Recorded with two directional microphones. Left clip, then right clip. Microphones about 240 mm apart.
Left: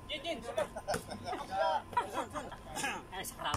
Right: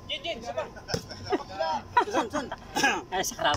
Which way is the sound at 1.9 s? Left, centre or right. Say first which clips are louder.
Right 10 dB; right.